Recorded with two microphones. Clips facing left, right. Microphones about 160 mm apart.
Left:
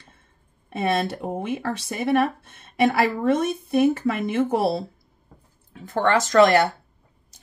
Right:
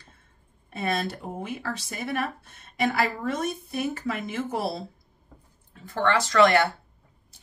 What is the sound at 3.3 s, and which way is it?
Speech, 55° left (ahead or behind).